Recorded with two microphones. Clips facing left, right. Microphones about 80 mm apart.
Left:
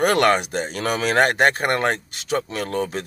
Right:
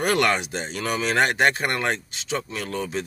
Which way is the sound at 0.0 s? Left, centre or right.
Left.